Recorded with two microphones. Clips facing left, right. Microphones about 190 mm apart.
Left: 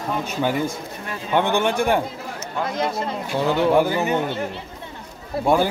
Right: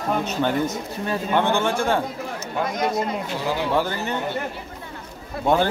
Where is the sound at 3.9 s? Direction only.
15° left (ahead or behind).